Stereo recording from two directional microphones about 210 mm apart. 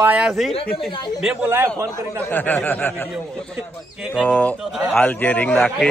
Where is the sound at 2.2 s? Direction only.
10° left (ahead or behind).